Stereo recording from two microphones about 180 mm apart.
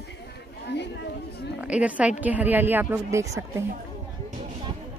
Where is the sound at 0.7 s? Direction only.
70° left (ahead or behind).